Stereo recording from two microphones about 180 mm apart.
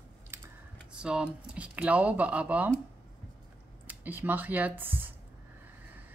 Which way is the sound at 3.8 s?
10° right (ahead or behind).